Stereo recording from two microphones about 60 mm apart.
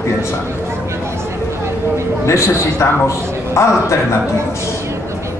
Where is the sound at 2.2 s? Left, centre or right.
Left.